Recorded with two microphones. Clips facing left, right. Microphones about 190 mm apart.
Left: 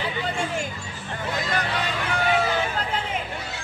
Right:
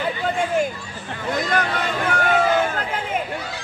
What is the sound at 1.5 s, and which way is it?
Vehicle, 50° right (ahead or behind).